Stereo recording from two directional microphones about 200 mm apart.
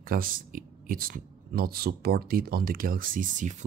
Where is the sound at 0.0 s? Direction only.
45° right (ahead or behind).